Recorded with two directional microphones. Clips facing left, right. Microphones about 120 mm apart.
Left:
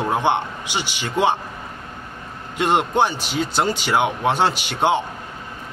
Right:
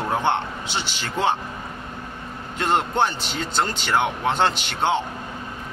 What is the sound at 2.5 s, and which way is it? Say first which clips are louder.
A man's voice: left 3 dB; 10° left (ahead or behind).